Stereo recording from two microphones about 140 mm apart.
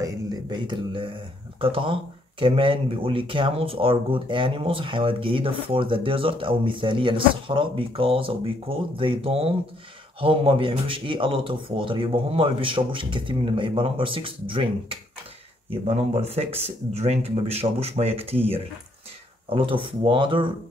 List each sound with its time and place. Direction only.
0.0 s speech: 25° right (ahead or behind)
15.7 s speech: 50° right (ahead or behind)